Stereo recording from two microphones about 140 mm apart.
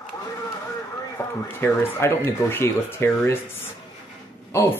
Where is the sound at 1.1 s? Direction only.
15° left (ahead or behind).